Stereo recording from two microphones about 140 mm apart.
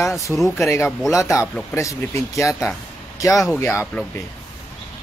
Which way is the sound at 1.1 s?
20° left (ahead or behind).